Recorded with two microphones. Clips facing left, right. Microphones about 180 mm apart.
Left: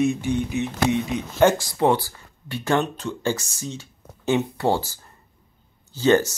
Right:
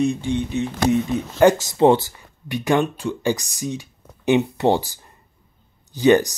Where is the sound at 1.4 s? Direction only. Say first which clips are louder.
Right 3 dB; 5° right (ahead or behind).